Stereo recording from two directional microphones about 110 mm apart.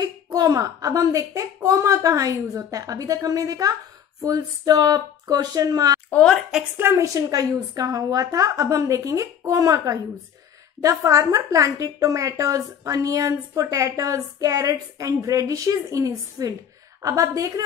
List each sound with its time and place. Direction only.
0.0 s a woman's voice: 35° right (ahead or behind)
6.0 s a woman's voice: 10° left (ahead or behind)
6.8 s a woman's voice: 25° right (ahead or behind)